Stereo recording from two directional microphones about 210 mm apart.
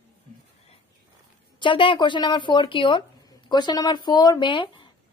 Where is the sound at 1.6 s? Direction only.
25° left (ahead or behind).